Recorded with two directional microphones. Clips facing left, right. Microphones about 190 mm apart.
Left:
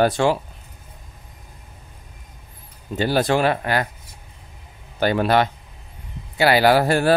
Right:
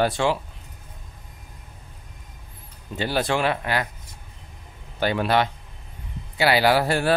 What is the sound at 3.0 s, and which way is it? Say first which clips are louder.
Speech: left 4 dB; 45° left (ahead or behind).